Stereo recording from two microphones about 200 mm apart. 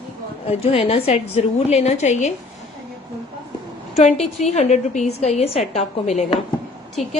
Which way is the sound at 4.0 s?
35° left (ahead or behind).